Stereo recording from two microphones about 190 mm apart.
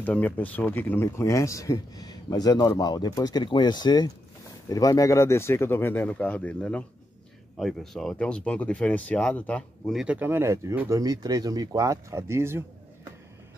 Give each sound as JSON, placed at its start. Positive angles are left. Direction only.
{"t": 0.0, "sound": "speech", "side_deg": 10}